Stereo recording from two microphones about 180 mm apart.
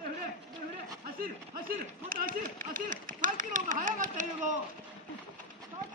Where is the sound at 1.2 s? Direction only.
50° right (ahead or behind).